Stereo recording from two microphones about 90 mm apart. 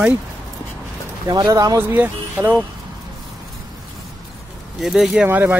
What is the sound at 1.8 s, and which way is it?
Speech, 25° right (ahead or behind).